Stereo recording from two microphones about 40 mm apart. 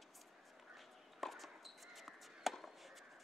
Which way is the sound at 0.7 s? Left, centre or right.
Centre.